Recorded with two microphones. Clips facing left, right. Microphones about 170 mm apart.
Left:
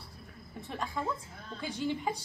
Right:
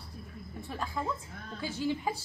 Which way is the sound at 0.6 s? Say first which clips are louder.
Even; centre (ahead or behind).